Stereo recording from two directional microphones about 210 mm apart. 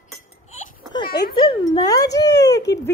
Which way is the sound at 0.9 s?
20° left (ahead or behind).